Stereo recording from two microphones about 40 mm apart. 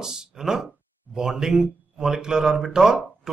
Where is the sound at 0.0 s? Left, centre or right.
Centre.